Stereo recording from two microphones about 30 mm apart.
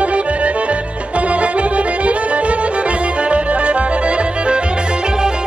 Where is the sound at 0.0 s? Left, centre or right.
Right.